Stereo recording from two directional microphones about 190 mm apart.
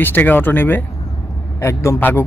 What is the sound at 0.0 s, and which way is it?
Speech, 10° left (ahead or behind).